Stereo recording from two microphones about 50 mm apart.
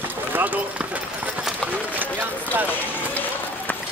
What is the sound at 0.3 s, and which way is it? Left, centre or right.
Clip-clop, right.